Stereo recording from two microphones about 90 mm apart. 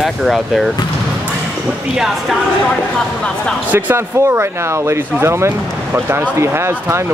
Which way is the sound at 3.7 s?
25° right (ahead or behind).